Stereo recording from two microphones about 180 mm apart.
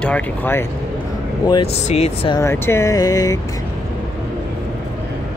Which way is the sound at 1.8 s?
35° left (ahead or behind).